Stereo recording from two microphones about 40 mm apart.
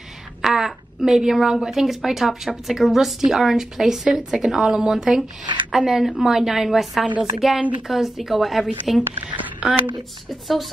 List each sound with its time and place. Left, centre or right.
0.4 s a woman's voice: centre
9.6 s speech: right